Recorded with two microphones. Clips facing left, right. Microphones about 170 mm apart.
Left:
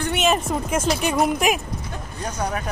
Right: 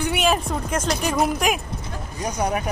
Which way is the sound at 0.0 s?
Centre (ahead or behind).